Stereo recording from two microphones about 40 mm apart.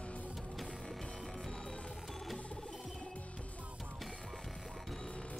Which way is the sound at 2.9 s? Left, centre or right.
Left.